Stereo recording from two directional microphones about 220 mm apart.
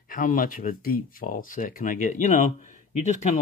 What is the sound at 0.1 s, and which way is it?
Speech, 40° left (ahead or behind).